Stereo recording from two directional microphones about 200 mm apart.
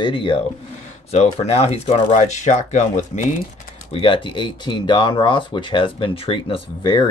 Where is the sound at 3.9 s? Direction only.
25° left (ahead or behind).